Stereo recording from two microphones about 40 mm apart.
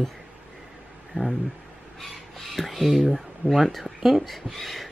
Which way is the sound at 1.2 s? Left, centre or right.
Right.